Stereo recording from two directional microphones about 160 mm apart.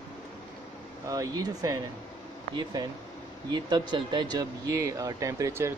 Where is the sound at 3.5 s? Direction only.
25° right (ahead or behind).